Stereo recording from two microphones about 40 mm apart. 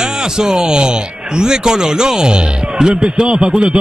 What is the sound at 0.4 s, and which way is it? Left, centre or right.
A man's voice, centre.